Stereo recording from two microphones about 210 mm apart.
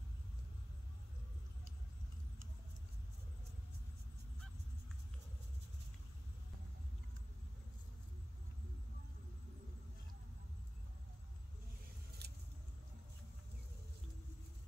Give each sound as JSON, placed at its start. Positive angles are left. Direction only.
{"t": 12.2, "sound": "vehicle", "side_deg": -50}